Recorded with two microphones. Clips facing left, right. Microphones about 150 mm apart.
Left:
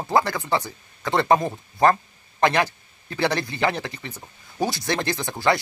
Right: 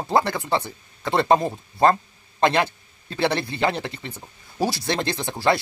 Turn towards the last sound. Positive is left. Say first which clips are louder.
# even
turn(degrees=-25)  # may be behind; listen again after turning